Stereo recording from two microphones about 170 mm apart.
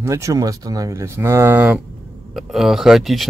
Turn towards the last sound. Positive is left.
turn(degrees=0)  # may be behind; listen again after turning